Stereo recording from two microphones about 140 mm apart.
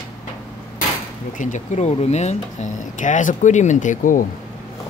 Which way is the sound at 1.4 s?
60° left (ahead or behind).